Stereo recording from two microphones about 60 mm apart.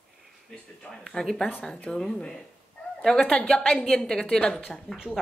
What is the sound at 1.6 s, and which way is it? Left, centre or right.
A woman's voice, centre.